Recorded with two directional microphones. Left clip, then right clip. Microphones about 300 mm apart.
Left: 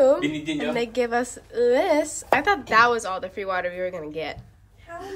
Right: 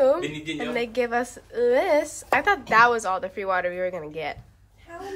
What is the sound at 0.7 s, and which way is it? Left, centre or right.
A woman's voice, centre.